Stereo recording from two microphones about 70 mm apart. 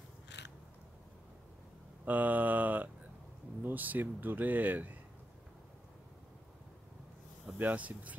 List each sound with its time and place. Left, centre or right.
2.0 s a sound: right
3.6 s speech: right
7.5 s speech: right